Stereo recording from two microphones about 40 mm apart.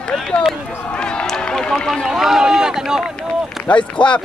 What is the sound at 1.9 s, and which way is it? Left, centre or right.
Speech, centre.